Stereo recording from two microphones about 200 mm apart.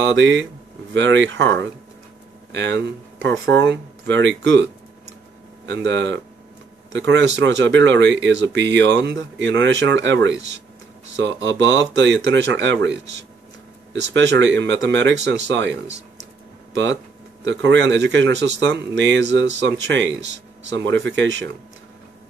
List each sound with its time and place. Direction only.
0.0 s speech: 65° right (ahead or behind)
5.7 s speech: 65° right (ahead or behind)
14.1 s speech: 65° right (ahead or behind)